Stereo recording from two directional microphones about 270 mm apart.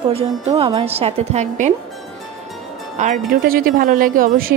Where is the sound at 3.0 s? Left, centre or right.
Right.